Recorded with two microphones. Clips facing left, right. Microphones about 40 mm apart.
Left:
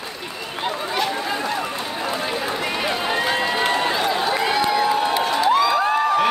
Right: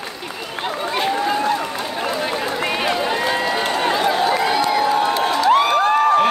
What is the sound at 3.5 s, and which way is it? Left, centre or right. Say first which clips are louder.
Run: even; centre.